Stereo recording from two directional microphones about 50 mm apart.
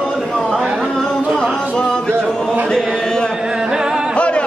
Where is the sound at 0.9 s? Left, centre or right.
Centre.